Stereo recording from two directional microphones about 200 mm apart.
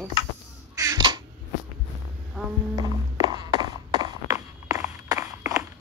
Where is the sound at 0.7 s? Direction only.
20° right (ahead or behind).